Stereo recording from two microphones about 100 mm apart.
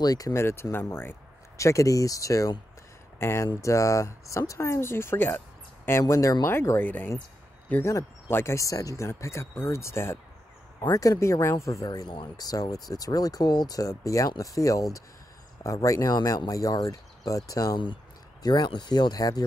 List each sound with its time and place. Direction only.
0.0 s speech: 40° left (ahead or behind)
0.3 s speech: 25° left (ahead or behind)
10.8 s speech: 40° left (ahead or behind)